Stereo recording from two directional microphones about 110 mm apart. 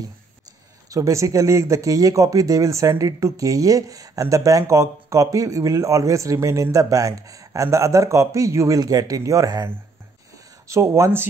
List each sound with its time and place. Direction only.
0.8 s speech: 30° right (ahead or behind)
10.7 s speech: 25° right (ahead or behind)